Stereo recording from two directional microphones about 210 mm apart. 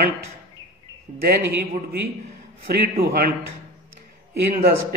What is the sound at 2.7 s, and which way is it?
Speech, 50° right (ahead or behind).